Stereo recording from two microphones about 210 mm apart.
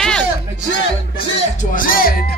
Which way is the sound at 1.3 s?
40° left (ahead or behind).